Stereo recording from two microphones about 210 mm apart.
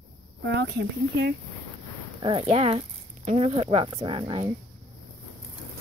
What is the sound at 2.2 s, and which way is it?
Speech, 25° right (ahead or behind).